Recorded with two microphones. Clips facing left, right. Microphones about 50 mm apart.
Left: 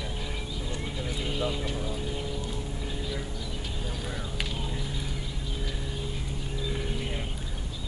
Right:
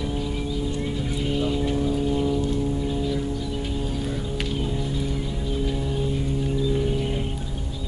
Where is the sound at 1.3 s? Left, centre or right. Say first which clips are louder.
Right 8 dB; centre.